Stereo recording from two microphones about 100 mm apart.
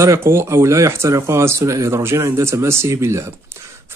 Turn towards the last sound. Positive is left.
turn(degrees=-25)  # may be behind; listen again after turning